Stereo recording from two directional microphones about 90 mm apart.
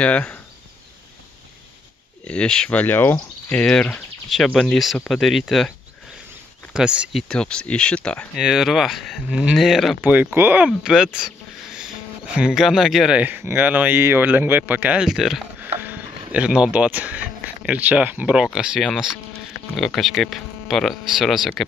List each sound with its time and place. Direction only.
0.0 s speech: 15° left (ahead or behind)
2.2 s speech: 10° left (ahead or behind)
3.2 s speech: 10° left (ahead or behind)
6.7 s speech: 10° right (ahead or behind)
7.1 s speech: 5° left (ahead or behind)
8.4 s speech: 5° right (ahead or behind)
10.0 s speech: 20° right (ahead or behind)
10.6 s speech: 5° right (ahead or behind)
13.2 s speech: 25° right (ahead or behind)
15.0 s speech: 5° right (ahead or behind)
15.6 s speech: 20° right (ahead or behind); by 21.6 s centre (ahead or behind)